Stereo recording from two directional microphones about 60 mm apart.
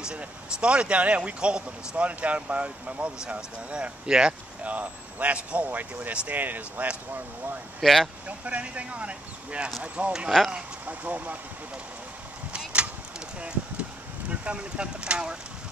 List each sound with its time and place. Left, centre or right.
0.0 s speech: centre
7.8 s speech: centre
8.3 s speech: right
10.3 s speech: centre
10.9 s speech: right
12.5 s a sound: centre
14.3 s speech: right